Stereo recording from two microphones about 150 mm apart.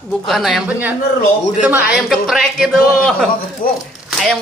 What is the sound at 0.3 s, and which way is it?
Speech, centre (ahead or behind).